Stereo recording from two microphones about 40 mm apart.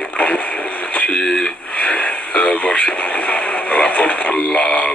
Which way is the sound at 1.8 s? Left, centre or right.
Left.